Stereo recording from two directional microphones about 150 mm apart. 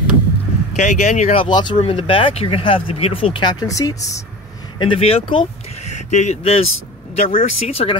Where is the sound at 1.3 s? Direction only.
30° left (ahead or behind).